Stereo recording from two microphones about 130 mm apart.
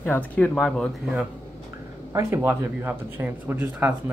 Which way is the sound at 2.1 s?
15° right (ahead or behind).